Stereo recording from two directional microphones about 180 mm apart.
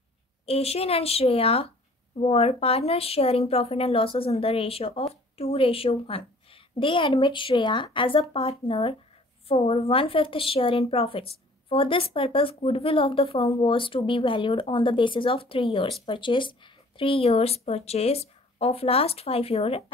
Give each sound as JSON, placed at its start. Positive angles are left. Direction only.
{"t": 0.5, "sound": "speech", "side_deg": 35}